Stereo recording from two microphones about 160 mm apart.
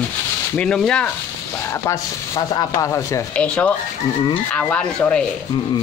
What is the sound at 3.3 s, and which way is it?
Speech, 10° left (ahead or behind).